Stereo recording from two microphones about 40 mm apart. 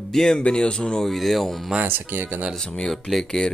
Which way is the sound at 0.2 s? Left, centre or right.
Left.